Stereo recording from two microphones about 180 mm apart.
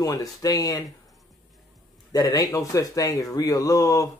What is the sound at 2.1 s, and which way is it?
Speech, 20° left (ahead or behind).